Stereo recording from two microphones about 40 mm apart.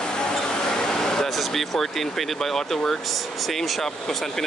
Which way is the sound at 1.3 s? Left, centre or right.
Centre.